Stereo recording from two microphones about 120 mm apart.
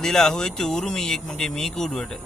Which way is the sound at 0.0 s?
5° left (ahead or behind).